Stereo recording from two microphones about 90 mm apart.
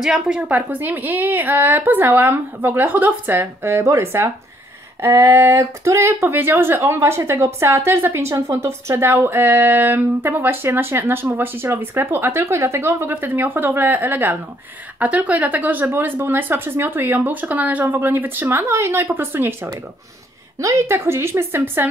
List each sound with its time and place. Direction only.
0.0 s a woman's voice: 5° right (ahead or behind)
0.5 s speech: 20° right (ahead or behind)
20.5 s speech: 35° right (ahead or behind)